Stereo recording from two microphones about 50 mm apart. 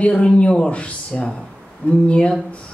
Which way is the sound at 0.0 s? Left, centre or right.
Left.